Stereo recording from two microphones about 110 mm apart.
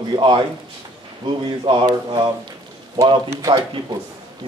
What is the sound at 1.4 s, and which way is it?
Speech, 50° right (ahead or behind).